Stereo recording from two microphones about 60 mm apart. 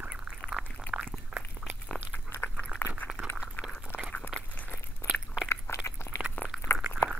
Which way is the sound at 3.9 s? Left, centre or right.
Left.